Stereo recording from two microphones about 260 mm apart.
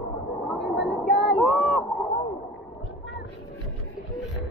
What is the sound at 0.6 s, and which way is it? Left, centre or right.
Speech, left.